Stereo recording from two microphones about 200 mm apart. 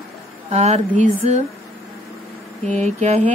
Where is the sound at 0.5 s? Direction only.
30° right (ahead or behind).